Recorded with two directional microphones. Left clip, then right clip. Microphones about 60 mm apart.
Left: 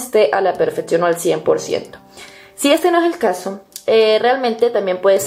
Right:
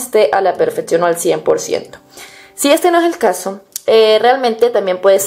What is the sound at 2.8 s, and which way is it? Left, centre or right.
A woman's voice, right.